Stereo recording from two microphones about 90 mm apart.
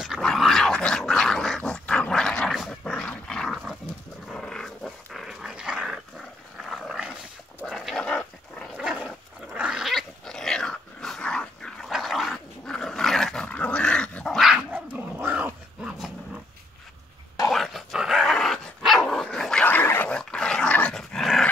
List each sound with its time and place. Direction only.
0.2 s dog: 5° left (ahead or behind)
2.5 s dog: centre (ahead or behind)
7.9 s dog: 10° left (ahead or behind)
8.7 s dog: 5° right (ahead or behind)
14.7 s dog: 20° right (ahead or behind)
17.5 s dog: centre (ahead or behind)
19.6 s dog: 20° left (ahead or behind)
20.2 s dog: 10° left (ahead or behind)